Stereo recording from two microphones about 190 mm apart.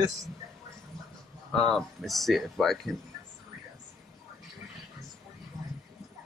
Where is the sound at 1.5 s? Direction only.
Centre (ahead or behind).